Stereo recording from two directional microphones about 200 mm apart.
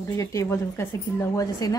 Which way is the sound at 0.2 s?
15° left (ahead or behind).